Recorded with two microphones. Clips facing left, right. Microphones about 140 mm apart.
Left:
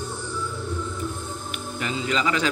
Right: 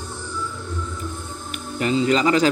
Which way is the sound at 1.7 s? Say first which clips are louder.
Right 8 dB; 40° right (ahead or behind).